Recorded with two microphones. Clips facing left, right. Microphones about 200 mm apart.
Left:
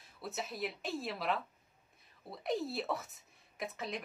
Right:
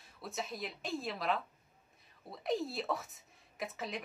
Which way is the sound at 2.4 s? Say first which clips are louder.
Right 1 dB; centre (ahead or behind).